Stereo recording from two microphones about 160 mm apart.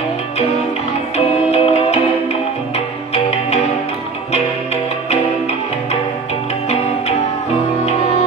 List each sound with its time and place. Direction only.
1.1 s music: 40° left (ahead or behind)